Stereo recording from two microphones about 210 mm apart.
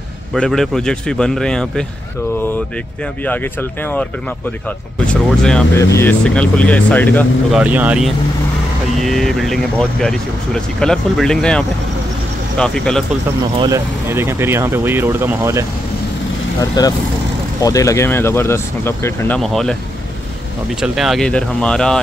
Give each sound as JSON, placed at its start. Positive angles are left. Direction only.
{"t": 0.3, "sound": "speech", "side_deg": 0}
{"t": 5.0, "sound": "speech", "side_deg": 5}
{"t": 7.5, "sound": "speech", "side_deg": -5}
{"t": 13.6, "sound": "speech", "side_deg": -15}
{"t": 16.8, "sound": "speech", "side_deg": 15}
{"t": 20.8, "sound": "speech", "side_deg": 0}